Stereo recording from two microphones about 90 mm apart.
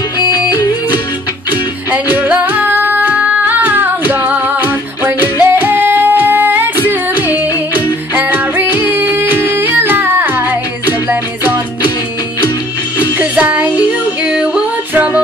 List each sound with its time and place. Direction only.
0.3 s music: 50° left (ahead or behind)
1.9 s music: 20° right (ahead or behind)
13.2 s music: 15° right (ahead or behind)